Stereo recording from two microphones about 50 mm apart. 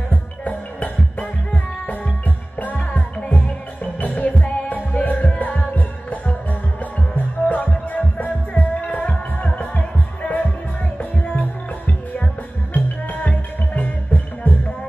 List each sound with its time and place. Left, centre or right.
0.1 s music: left
12.7 s music: left